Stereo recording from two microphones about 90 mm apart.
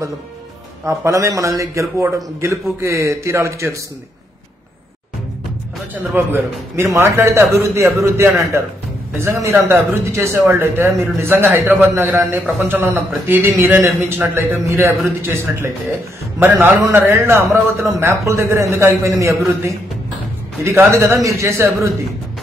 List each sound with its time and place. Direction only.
0.8 s a man's voice: 35° right (ahead or behind)
5.9 s a man's voice: 25° right (ahead or behind)
20.6 s a man's voice: 30° right (ahead or behind)